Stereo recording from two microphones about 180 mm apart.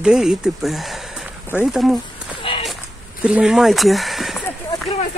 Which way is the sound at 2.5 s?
30° left (ahead or behind).